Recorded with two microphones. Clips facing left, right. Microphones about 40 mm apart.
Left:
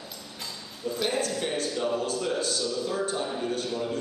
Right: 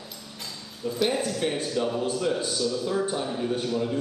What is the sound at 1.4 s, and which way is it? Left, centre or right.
A man's voice, centre.